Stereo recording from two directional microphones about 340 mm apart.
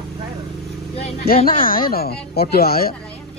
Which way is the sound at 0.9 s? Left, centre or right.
Left.